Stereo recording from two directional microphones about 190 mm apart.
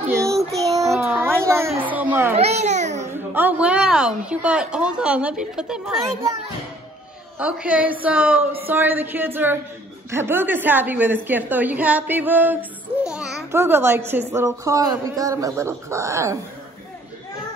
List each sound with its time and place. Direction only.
0.1 s child singing: 15° right (ahead or behind)
0.9 s a sound: 10° right (ahead or behind)
1.7 s a child's voice: 10° right (ahead or behind)
2.3 s a sound: 35° right (ahead or behind)
3.3 s a woman's voice: 10° right (ahead or behind)
7.3 s a child's voice: 5° right (ahead or behind)